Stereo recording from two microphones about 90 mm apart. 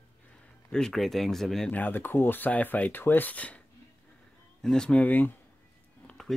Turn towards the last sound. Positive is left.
turn(degrees=5)  # may be behind; listen again after turning